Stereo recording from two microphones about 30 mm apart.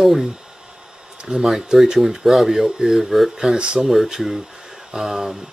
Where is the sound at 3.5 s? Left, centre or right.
Right.